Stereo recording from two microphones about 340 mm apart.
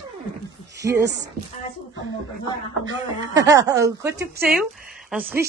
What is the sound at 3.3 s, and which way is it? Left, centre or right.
A woman's voice, centre.